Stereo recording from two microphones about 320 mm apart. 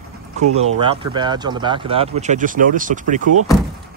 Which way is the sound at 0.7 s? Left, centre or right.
Centre.